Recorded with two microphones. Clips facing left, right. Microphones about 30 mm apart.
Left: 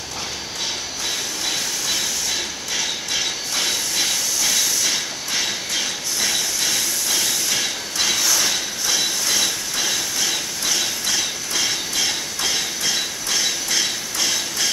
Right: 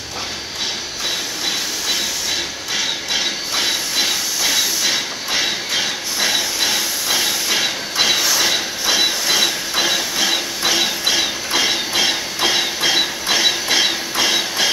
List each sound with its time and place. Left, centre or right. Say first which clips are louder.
1.9 s train: right 3 dB; centre